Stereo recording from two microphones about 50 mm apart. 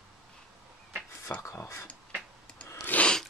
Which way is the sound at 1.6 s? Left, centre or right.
Left.